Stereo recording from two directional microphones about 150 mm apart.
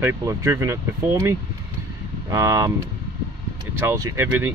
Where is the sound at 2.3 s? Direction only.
20° right (ahead or behind).